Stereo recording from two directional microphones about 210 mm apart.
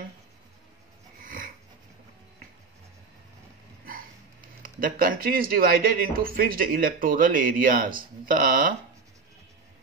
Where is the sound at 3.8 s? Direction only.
45° right (ahead or behind).